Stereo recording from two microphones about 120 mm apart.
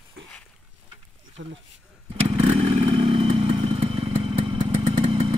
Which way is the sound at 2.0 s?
55° right (ahead or behind).